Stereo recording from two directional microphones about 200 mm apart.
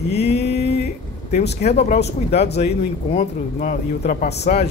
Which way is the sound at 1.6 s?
35° left (ahead or behind).